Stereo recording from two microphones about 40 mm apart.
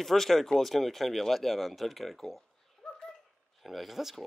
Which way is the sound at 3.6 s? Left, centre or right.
Centre.